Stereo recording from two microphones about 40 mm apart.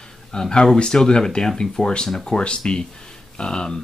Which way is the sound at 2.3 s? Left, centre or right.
Left.